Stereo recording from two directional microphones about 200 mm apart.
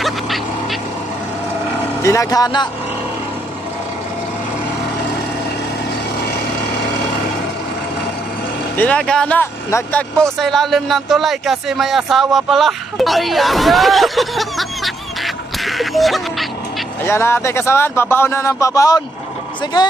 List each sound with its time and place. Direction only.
2.0 s speech: 15° left (ahead or behind)
8.7 s speech: 5° left (ahead or behind)
15.2 s quack: centre (ahead or behind)
17.0 s speech: 10° left (ahead or behind)